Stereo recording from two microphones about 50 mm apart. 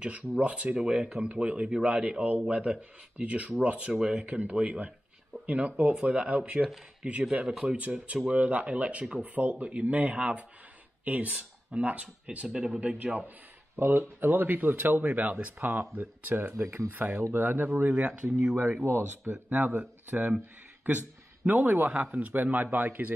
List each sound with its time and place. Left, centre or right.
0.0 s speech: right
0.7 s speech: centre; by 12.4 s right
12.4 s speech: centre
12.8 s speech: right
13.7 s a man's voice: right
17.0 s speech: right
17.7 s a man's voice: right
18.3 s speech: right
18.9 s speech: right
19.5 s a man's voice: right
21.5 s a man's voice: right